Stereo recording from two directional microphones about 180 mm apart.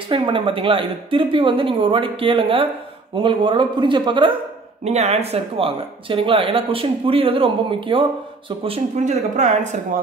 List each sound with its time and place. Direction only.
0.1 s speech: 30° right (ahead or behind)